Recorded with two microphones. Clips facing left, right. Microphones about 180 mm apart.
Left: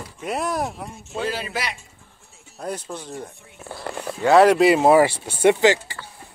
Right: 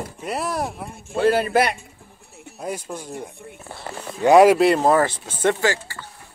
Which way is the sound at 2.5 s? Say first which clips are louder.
Right 1 dB; 10° right (ahead or behind).